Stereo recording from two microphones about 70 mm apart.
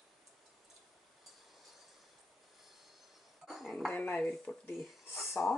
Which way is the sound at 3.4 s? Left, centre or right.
Centre.